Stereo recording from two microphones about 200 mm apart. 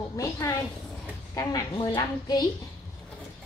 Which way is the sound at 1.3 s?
20° left (ahead or behind).